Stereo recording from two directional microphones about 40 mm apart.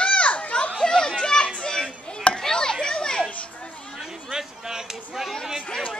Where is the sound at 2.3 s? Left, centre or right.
Centre.